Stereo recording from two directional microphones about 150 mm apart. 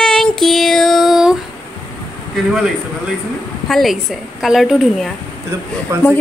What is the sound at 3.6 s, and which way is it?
A woman's voice, centre (ahead or behind).